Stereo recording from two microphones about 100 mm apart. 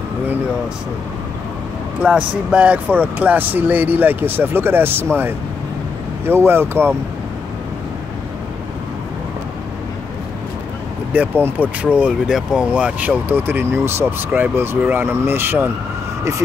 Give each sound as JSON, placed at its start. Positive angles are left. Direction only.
{"t": 2.0, "sound": "speech", "side_deg": -10}
{"t": 11.1, "sound": "speech", "side_deg": -15}